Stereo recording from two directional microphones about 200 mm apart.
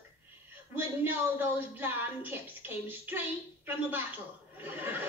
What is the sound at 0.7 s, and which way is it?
A woman's voice, 10° right (ahead or behind).